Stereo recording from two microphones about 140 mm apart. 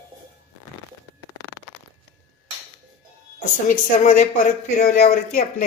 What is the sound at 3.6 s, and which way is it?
Speech, 65° left (ahead or behind).